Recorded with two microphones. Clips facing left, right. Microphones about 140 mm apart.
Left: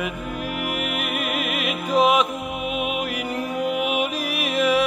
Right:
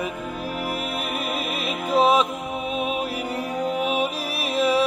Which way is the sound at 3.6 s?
35° right (ahead or behind).